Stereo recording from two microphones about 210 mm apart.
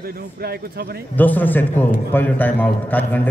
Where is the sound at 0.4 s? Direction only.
50° right (ahead or behind).